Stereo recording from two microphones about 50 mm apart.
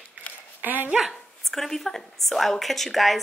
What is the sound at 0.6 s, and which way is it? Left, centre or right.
Speech, right.